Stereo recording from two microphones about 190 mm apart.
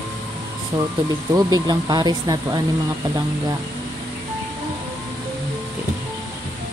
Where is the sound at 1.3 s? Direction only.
20° right (ahead or behind).